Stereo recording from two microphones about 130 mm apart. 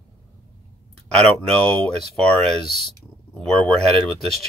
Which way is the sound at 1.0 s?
5° left (ahead or behind).